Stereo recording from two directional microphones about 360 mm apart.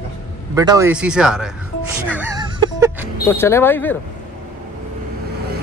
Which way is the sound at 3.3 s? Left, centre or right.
Centre.